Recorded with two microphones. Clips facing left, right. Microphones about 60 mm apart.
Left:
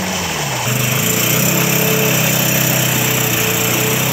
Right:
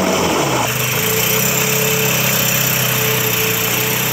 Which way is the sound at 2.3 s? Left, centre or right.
Centre.